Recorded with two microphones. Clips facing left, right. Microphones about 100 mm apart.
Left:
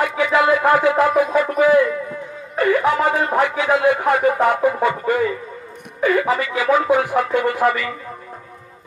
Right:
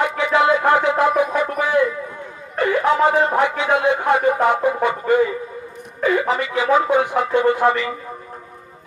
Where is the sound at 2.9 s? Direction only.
20° right (ahead or behind).